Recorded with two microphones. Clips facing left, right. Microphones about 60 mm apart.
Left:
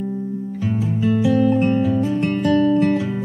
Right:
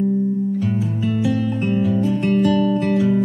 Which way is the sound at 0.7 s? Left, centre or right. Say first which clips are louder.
Left 2 dB; centre.